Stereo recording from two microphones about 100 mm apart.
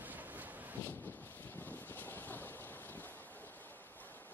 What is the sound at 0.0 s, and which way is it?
Wind noise, 15° right (ahead or behind).